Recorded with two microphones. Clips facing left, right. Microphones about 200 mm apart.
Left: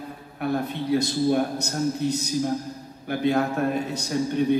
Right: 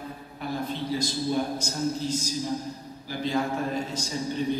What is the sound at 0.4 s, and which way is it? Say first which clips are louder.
A man's voice: left 5 dB; 60° left (ahead or behind).